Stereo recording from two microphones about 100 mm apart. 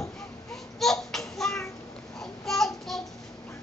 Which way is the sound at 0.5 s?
5° left (ahead or behind).